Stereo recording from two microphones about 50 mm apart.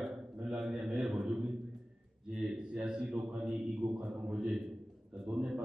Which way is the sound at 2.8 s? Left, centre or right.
Centre.